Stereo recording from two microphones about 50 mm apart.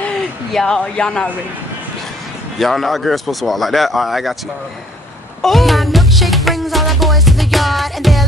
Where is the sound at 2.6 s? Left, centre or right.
Centre.